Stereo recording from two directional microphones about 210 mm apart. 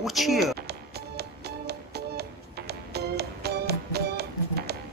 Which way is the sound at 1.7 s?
50° right (ahead or behind).